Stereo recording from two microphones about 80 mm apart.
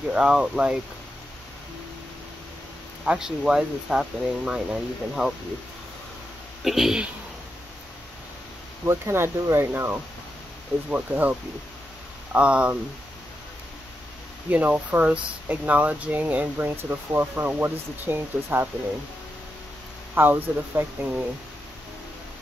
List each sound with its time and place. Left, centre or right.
0.1 s speech: centre
3.1 s speech: centre
6.6 s speech: centre
8.8 s speech: right; by 12.7 s centre
14.5 s speech: centre
20.2 s speech: right